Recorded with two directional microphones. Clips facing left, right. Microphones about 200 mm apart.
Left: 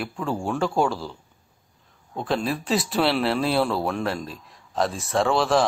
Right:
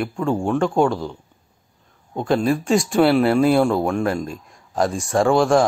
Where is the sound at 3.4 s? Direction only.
50° right (ahead or behind).